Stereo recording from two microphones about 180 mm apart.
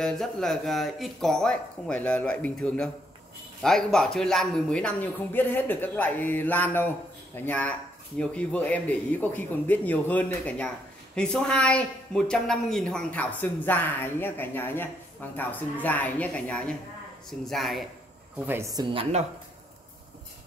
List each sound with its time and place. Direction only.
0.0 s speech: centre (ahead or behind)
18.5 s a woman's voice: 20° right (ahead or behind)